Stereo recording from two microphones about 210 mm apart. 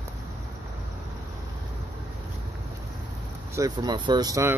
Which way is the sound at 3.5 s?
15° right (ahead or behind).